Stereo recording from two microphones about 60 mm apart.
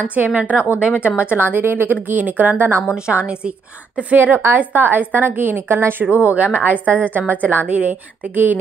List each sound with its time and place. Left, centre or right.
0.1 s a woman's voice: right
4.6 s a woman's voice: right
6.0 s a woman's voice: right